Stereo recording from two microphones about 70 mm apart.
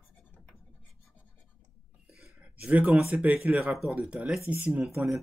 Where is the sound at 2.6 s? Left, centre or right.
Centre.